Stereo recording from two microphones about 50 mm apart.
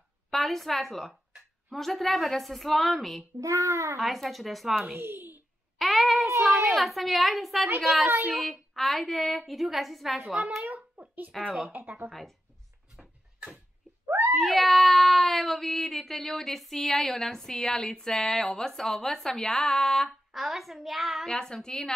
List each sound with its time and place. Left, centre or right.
0.3 s speech: centre
3.4 s a child's voice: right
4.0 s speech: centre
4.9 s speech: right
5.8 s a sound: centre
6.2 s a sound: right
6.7 s speech: centre
10.7 s a sound: right
11.7 s speech: right
12.1 s speech: centre
14.0 s a sound: right
14.3 s speech: centre
20.3 s speech: centre
21.3 s a woman's voice: centre